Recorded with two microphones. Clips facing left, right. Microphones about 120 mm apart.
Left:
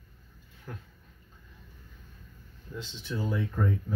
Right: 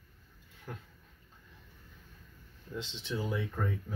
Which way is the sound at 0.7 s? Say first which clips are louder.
Left 1 dB; 20° right (ahead or behind).